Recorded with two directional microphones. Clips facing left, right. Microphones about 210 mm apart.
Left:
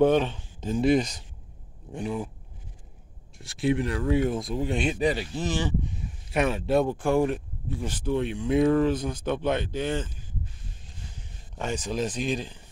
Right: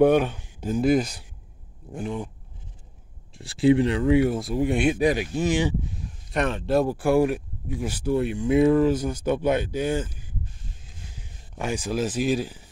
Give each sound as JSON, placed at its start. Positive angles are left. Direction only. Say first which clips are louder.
{"t": 0.0, "sound": "speech", "louder": "right 3 dB", "side_deg": -10}
{"t": 3.3, "sound": "speech", "louder": "right 7 dB", "side_deg": -30}
{"t": 4.0, "sound": "speech", "louder": "right 5 dB", "side_deg": -10}
{"t": 6.3, "sound": "speech", "louder": "right 1 dB", "side_deg": 5}
{"t": 11.5, "sound": "speech", "louder": "right 3 dB", "side_deg": -10}